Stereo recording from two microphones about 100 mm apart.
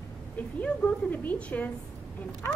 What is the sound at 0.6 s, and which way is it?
A woman's voice, 15° left (ahead or behind).